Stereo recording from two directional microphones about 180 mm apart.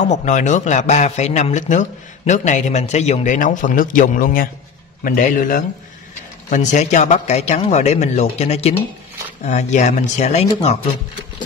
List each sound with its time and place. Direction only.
0.1 s a man's voice: 40° left (ahead or behind)